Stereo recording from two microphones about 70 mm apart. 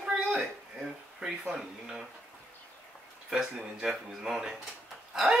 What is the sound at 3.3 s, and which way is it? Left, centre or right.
Speech, centre.